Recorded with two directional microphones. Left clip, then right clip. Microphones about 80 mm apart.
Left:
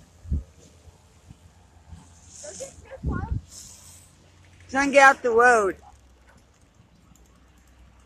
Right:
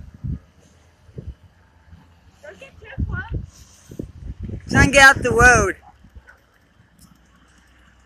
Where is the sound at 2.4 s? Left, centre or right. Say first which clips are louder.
Right 1 dB; centre.